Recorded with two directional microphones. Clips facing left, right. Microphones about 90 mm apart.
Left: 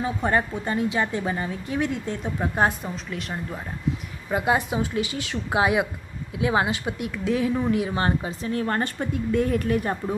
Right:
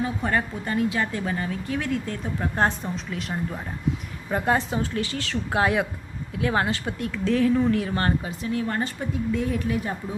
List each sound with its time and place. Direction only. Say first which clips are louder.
0.2 s speech: left 2 dB; 25° left (ahead or behind)
2.6 s a woman's voice: left 1 dB; centre (ahead or behind)
8.3 s a woman's voice: left 1 dB; 40° left (ahead or behind)